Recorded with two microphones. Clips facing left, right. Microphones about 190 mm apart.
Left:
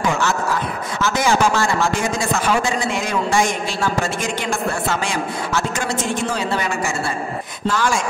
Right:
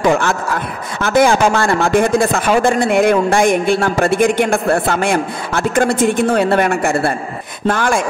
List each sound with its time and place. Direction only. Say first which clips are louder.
1.0 s speech: right 6 dB; 55° right (ahead or behind)